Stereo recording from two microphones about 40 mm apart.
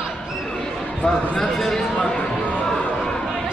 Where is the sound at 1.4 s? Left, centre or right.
Centre.